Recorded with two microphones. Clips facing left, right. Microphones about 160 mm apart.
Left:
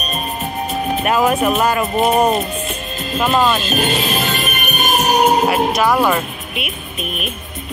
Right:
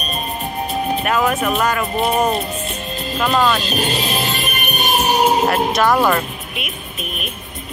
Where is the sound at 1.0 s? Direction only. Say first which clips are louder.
Left 5 dB; 15° left (ahead or behind).